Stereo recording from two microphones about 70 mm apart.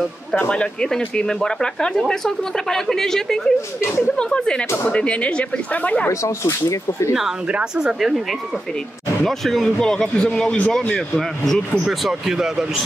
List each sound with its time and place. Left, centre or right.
0.5 s speech: centre
6.0 s speech: left
7.2 s speech: centre
11.9 s speech: centre